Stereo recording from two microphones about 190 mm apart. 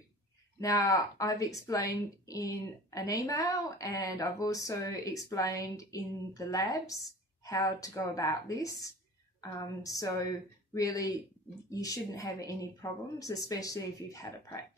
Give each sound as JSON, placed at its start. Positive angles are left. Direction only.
{"t": 0.6, "sound": "a woman's voice", "side_deg": 20}